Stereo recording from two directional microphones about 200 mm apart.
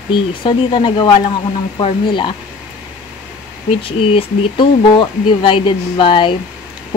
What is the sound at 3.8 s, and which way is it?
Speech, 25° left (ahead or behind).